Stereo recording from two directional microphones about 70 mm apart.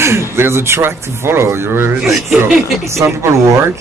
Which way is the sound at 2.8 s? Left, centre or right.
Right.